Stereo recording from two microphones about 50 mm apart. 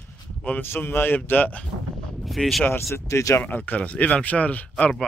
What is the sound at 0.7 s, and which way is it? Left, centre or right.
Speech, left.